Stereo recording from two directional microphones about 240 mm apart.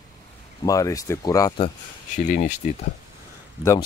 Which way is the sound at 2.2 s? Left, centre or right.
Left.